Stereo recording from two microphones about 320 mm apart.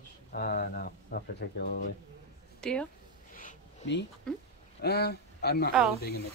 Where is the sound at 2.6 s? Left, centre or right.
Centre.